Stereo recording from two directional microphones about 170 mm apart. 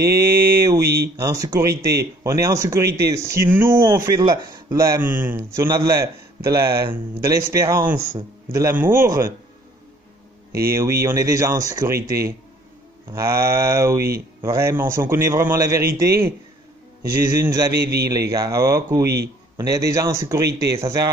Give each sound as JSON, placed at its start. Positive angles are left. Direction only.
{"t": 0.3, "sound": "mantra", "side_deg": -65}
{"t": 1.1, "sound": "a man's voice", "side_deg": -20}
{"t": 4.2, "sound": "a man's voice", "side_deg": -25}
{"t": 10.7, "sound": "a man's voice", "side_deg": -15}
{"t": 17.4, "sound": "a man's voice", "side_deg": -20}